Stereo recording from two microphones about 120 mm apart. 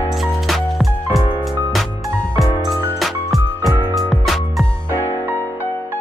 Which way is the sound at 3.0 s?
Centre (ahead or behind).